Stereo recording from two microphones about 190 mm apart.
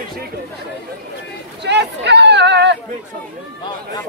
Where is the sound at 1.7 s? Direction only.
65° right (ahead or behind).